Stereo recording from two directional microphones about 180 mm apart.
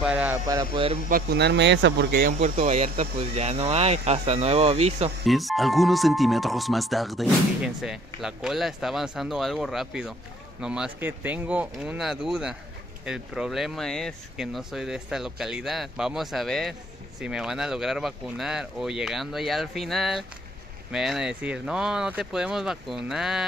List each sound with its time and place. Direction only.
0.0 s speech: 5° right (ahead or behind)
0.5 s speech: 25° right (ahead or behind)
1.0 s speech: 60° right (ahead or behind); by 5.1 s 35° right (ahead or behind)
5.2 s speech: centre (ahead or behind)